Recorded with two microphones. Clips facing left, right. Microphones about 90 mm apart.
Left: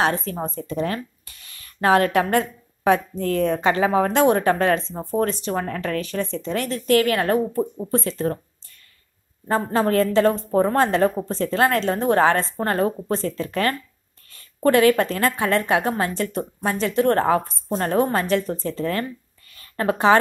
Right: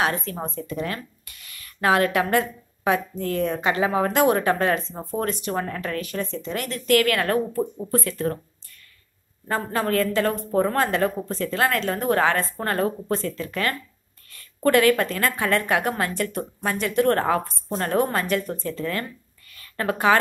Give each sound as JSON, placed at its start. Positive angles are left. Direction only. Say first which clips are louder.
{"t": 0.0, "sound": "a woman's voice", "louder": "left 3 dB", "side_deg": 30}
{"t": 4.4, "sound": "speech", "louder": "left 2 dB", "side_deg": 40}
{"t": 6.4, "sound": "a woman's voice", "louder": "left 4 dB", "side_deg": 30}
{"t": 9.5, "sound": "a woman's voice", "louder": "left 4 dB", "side_deg": 30}
{"t": 14.6, "sound": "a woman's voice", "louder": "left 2 dB", "side_deg": 20}
{"t": 19.5, "sound": "a sound", "louder": "left 3 dB", "side_deg": 30}